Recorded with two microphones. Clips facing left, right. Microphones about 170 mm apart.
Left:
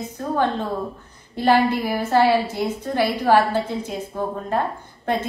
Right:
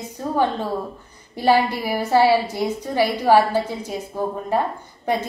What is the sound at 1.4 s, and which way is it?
A woman's voice, 10° right (ahead or behind).